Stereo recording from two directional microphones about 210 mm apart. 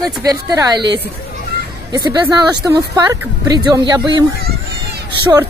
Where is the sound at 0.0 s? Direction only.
15° right (ahead or behind).